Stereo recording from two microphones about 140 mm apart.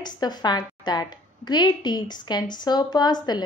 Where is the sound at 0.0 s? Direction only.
30° left (ahead or behind).